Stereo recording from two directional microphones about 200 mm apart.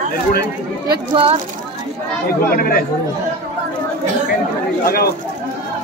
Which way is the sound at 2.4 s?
45° left (ahead or behind).